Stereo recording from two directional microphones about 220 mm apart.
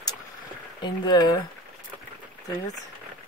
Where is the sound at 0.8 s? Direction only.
20° left (ahead or behind).